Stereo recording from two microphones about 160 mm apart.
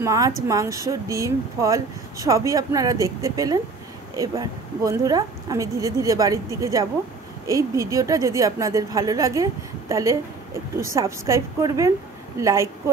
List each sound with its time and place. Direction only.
0.0 s a woman's voice: 20° right (ahead or behind)